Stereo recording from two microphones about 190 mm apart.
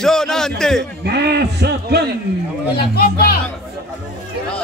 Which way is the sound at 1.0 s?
60° right (ahead or behind).